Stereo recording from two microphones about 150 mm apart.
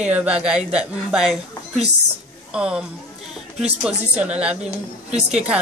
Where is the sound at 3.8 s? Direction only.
5° right (ahead or behind).